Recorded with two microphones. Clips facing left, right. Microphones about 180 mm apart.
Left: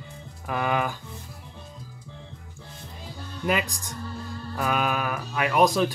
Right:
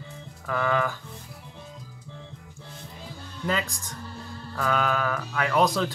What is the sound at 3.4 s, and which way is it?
Speech, 15° left (ahead or behind).